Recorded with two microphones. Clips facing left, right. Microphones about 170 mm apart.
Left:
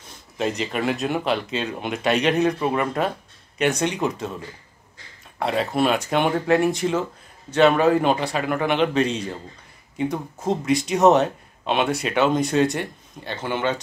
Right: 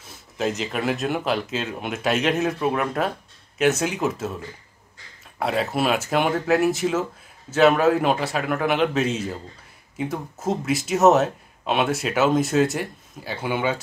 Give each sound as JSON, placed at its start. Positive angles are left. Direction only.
{"t": 0.0, "sound": "speech", "side_deg": 0}
{"t": 5.4, "sound": "speech", "side_deg": 0}